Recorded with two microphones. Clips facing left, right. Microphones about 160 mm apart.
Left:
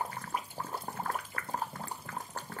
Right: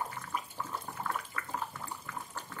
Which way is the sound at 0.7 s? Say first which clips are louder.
Left 1 dB; 35° left (ahead or behind).